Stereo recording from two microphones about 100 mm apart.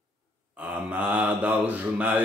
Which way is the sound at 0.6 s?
15° right (ahead or behind).